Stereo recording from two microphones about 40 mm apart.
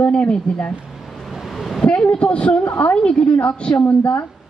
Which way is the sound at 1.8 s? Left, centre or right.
Left.